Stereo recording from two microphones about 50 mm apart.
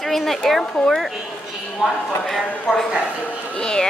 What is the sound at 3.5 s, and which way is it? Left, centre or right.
Speech, centre.